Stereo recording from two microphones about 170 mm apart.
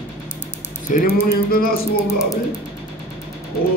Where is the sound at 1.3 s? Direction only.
60° left (ahead or behind).